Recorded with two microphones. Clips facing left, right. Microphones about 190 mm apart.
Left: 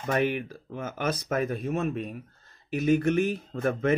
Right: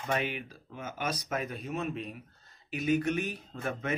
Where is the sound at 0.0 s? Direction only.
45° left (ahead or behind).